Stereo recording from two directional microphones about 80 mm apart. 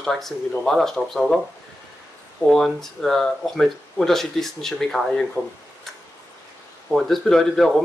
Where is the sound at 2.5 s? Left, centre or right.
Centre.